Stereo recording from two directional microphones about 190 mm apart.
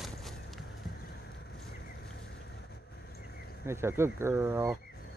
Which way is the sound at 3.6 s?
15° right (ahead or behind).